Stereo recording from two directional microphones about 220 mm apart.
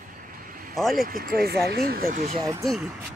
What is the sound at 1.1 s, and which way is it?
Speech, 45° right (ahead or behind).